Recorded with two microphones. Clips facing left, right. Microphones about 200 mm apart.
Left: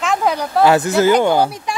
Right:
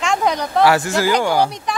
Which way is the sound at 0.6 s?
20° left (ahead or behind).